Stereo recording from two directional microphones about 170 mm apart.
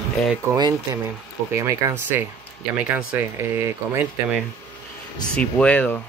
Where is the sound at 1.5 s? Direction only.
15° right (ahead or behind).